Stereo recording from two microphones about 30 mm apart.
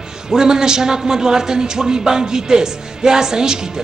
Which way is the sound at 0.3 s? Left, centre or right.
Right.